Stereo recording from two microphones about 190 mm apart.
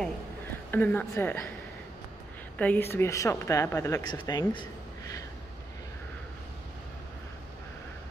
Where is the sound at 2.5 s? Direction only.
10° left (ahead or behind).